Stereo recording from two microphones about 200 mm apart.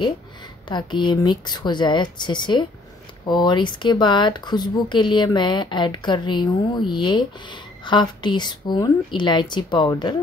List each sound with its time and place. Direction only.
0.7 s speech: 20° left (ahead or behind)